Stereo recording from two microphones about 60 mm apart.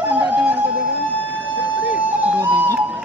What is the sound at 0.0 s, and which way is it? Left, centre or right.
Music, right.